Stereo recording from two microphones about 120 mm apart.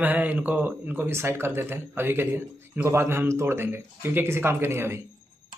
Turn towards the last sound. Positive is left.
turn(degrees=-20)  # may be behind; listen again after turning